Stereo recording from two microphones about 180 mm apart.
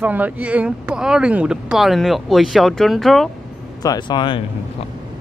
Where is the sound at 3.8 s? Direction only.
20° left (ahead or behind).